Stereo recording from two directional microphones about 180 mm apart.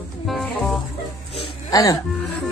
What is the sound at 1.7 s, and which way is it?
Speech, 20° left (ahead or behind).